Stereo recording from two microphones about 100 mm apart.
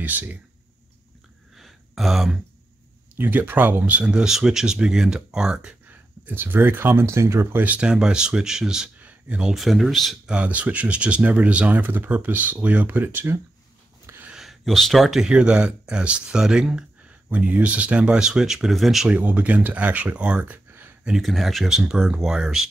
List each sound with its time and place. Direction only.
0.0 s speech: 15° right (ahead or behind)
1.5 s a sound: 5° right (ahead or behind)
3.2 s speech: 20° right (ahead or behind)
7.6 s speech: 10° right (ahead or behind)
10.3 s speech: 15° right (ahead or behind)
14.0 s a sound: 20° right (ahead or behind)
14.3 s speech: 5° right (ahead or behind)
19.0 s speech: 15° right (ahead or behind)
21.0 s speech: centre (ahead or behind)